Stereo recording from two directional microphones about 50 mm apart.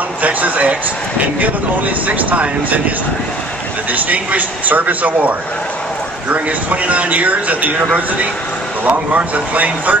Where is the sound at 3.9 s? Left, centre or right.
Right.